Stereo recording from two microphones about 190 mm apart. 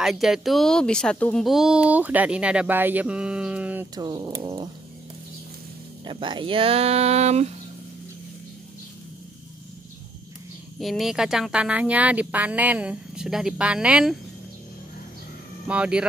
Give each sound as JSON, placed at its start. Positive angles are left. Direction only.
{"t": 0.0, "sound": "speech", "side_deg": 0}
{"t": 3.9, "sound": "speech", "side_deg": -20}
{"t": 6.0, "sound": "speech", "side_deg": -25}
{"t": 10.8, "sound": "speech", "side_deg": 0}
{"t": 15.6, "sound": "speech", "side_deg": -5}